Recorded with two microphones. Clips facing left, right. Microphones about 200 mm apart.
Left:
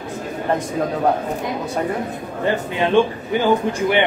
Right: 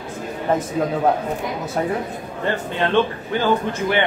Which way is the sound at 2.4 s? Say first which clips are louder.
Left 2 dB; 10° left (ahead or behind).